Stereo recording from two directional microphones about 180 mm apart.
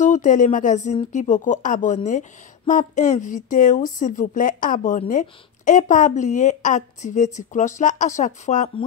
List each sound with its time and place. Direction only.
0.0 s speech: 45° left (ahead or behind)